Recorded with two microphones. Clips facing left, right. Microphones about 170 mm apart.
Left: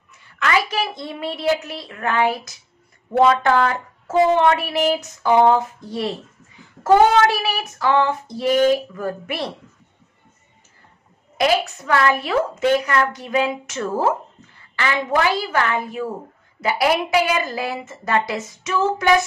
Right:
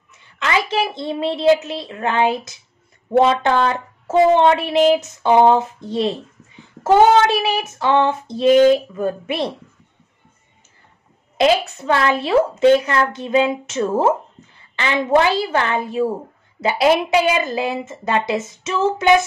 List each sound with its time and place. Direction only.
0.4 s speech: 20° right (ahead or behind)
11.3 s speech: 25° right (ahead or behind)